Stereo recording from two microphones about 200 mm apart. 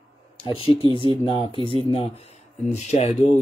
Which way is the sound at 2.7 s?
35° left (ahead or behind).